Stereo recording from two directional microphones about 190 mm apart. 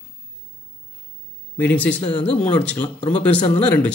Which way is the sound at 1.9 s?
25° left (ahead or behind).